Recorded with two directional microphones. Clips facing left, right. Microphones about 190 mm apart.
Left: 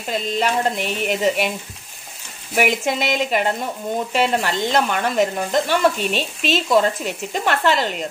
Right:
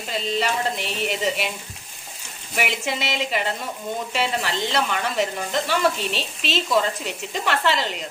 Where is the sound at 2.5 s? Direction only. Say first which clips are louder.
Left 6 dB; 50° left (ahead or behind).